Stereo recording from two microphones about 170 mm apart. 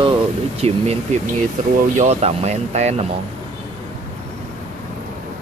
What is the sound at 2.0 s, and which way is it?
Speech, 40° right (ahead or behind).